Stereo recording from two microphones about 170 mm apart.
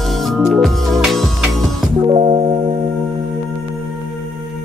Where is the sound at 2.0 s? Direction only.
35° right (ahead or behind).